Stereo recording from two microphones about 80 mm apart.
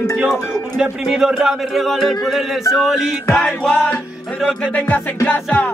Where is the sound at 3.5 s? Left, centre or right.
Centre.